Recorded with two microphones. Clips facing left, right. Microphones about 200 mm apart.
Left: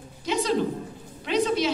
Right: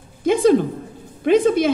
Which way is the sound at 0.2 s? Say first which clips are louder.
Right 10 dB; 50° right (ahead or behind).